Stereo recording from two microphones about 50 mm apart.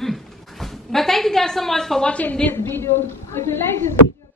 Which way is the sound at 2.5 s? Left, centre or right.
Left.